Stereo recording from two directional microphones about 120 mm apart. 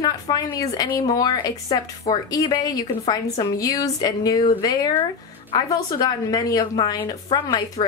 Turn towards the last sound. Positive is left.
turn(degrees=35)  # may be behind; listen again after turning